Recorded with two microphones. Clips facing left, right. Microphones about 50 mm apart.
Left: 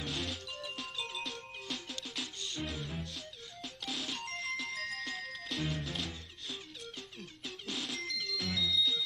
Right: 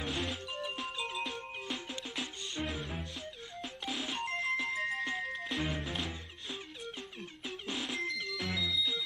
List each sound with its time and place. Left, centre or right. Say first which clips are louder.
0.0 s music: right 3 dB; centre
7.4 s music: right 2 dB; right